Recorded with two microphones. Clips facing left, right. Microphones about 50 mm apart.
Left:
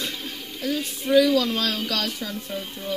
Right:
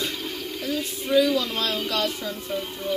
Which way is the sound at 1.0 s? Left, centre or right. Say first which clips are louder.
Left 2 dB; centre.